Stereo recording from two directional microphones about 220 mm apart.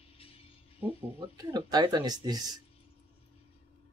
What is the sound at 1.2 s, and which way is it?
Speech, 20° right (ahead or behind).